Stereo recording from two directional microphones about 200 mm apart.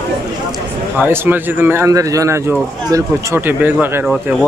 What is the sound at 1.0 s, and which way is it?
A man's voice, 10° right (ahead or behind).